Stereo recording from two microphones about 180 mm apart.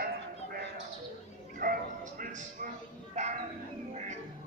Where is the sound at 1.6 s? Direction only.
50° right (ahead or behind).